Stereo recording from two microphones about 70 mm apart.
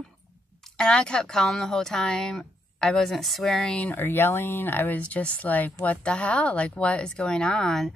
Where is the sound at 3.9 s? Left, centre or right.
Left; by 7.9 s centre.